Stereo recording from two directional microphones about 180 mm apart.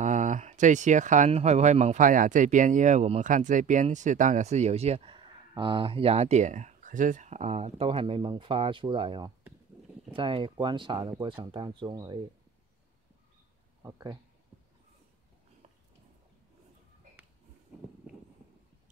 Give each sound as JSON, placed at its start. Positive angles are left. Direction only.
{"t": 0.0, "sound": "speech", "side_deg": -45}
{"t": 13.8, "sound": "speech", "side_deg": -20}